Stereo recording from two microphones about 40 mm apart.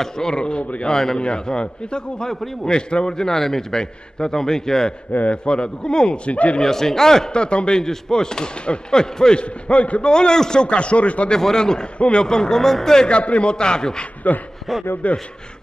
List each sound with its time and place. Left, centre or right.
0.0 s a man's voice: centre
0.8 s a man's voice: centre
5.1 s a man's voice: left
5.4 s a man's voice: left
6.6 s a man's voice: centre
7.3 s a man's voice: left
9.4 s a man's voice: left
10.0 s a man's voice: centre
11.3 s a man's voice: centre
13.0 s a man's voice: left
14.2 s speech: left
14.7 s a man's voice: centre
15.0 s a man's voice: left